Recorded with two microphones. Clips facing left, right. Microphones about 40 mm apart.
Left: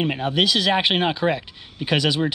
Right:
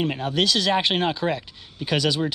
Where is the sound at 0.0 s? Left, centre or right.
Left.